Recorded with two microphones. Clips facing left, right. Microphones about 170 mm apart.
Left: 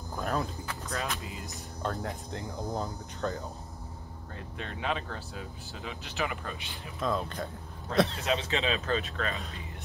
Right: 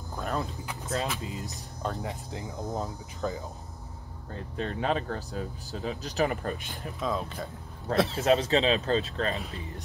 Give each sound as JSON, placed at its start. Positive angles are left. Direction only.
{"t": 0.1, "sound": "a sound", "side_deg": 0}
{"t": 0.7, "sound": "music", "side_deg": -20}
{"t": 1.8, "sound": "speech", "side_deg": 0}
{"t": 4.3, "sound": "speech", "side_deg": -35}
{"t": 7.0, "sound": "speech", "side_deg": 0}
{"t": 8.2, "sound": "speech", "side_deg": -40}